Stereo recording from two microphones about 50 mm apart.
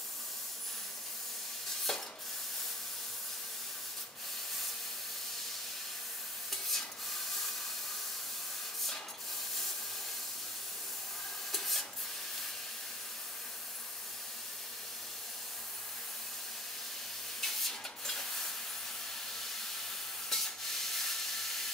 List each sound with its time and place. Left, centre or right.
1.9 s spray: centre
6.5 s rub: centre
11.5 s printer: centre
17.4 s rub: centre
19.4 s steam: centre
20.2 s a sound: centre